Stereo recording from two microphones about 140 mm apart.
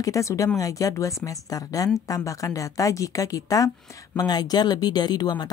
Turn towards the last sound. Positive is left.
turn(degrees=30)  # may be behind; listen again after turning